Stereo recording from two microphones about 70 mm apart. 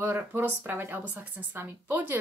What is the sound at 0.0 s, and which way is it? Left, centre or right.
Speech, right.